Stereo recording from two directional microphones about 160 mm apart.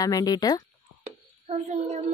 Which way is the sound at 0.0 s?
20° left (ahead or behind).